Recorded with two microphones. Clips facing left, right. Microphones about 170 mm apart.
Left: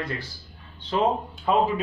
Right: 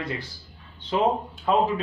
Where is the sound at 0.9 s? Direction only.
5° right (ahead or behind).